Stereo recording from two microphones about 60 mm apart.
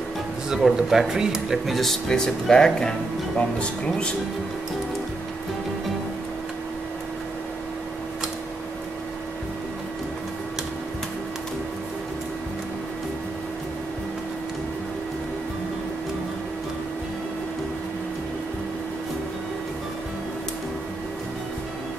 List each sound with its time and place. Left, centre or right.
0.5 s speech: centre
1.8 s speech: centre